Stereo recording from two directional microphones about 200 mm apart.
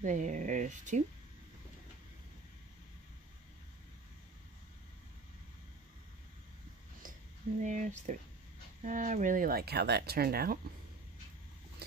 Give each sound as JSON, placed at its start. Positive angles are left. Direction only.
{"t": 0.0, "sound": "speech", "side_deg": -40}
{"t": 7.6, "sound": "speech", "side_deg": -40}